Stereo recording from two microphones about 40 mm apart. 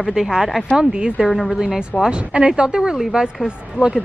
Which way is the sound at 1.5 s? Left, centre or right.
Centre.